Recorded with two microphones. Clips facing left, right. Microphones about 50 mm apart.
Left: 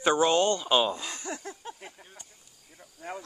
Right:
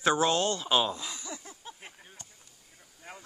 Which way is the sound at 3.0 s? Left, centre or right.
Left.